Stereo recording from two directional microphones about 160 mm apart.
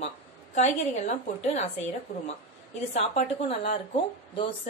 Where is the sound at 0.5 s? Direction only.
45° left (ahead or behind).